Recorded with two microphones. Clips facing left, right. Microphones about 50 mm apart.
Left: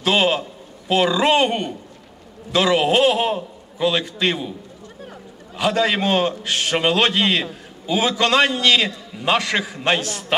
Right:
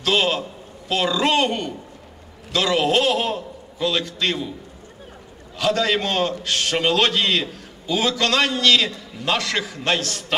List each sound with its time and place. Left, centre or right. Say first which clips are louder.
0.0 s a man's voice: left 2 dB; centre
5.6 s a man's voice: left 1 dB; centre